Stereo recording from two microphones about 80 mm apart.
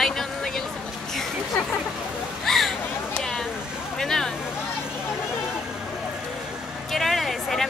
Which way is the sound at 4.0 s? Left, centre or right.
Centre.